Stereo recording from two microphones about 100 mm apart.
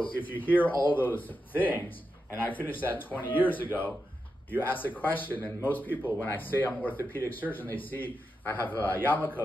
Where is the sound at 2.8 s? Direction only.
20° left (ahead or behind).